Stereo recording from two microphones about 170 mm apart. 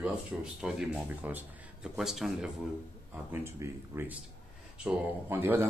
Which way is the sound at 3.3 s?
15° right (ahead or behind).